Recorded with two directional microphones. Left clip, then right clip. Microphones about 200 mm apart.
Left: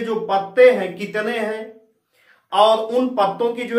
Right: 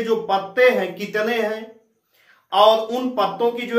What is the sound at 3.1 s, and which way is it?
Speech, 15° left (ahead or behind).